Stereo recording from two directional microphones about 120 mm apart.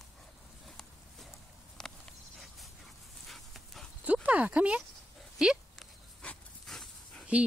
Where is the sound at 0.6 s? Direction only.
Centre (ahead or behind).